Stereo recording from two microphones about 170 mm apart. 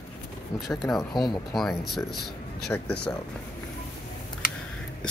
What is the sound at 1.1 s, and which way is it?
Speech, 25° left (ahead or behind).